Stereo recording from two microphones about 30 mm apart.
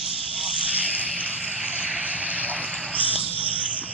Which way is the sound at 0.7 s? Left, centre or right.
Right.